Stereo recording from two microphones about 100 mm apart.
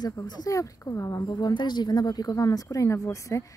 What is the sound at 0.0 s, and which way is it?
Speech, 40° left (ahead or behind).